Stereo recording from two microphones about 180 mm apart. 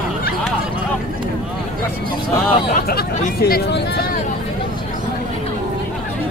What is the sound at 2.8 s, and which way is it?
Chatter, 55° left (ahead or behind).